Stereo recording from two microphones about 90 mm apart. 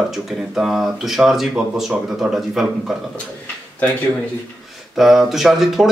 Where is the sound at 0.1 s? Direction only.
5° right (ahead or behind).